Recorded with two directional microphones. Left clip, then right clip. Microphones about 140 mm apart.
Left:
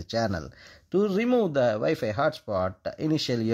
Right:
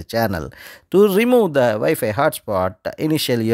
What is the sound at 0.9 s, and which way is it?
Speech, 45° right (ahead or behind).